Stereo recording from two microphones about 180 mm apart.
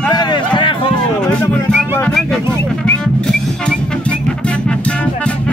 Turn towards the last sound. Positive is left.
turn(degrees=5)  # may be behind; listen again after turning